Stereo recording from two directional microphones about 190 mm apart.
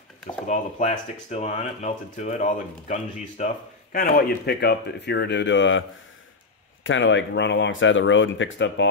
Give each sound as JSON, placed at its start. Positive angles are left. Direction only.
{"t": 0.5, "sound": "speech", "side_deg": 35}